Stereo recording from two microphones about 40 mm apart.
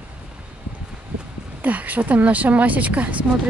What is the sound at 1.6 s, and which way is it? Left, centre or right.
Speech, right.